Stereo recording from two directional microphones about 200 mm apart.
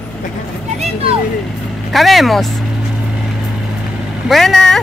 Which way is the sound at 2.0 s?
Centre (ahead or behind).